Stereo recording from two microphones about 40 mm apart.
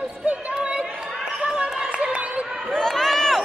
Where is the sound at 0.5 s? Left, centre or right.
Right.